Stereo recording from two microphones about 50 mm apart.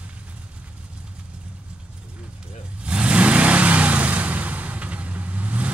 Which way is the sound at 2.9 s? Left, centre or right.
Right.